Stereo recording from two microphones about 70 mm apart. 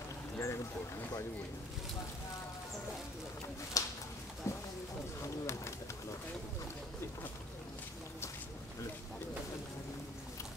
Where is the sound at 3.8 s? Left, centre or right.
Left.